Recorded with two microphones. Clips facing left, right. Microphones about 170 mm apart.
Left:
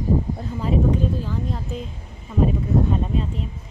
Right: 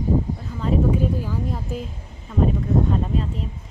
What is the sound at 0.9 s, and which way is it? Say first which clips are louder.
Speech: even; 10° right (ahead or behind).